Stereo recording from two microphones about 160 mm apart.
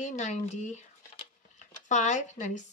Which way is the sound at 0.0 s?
50° left (ahead or behind).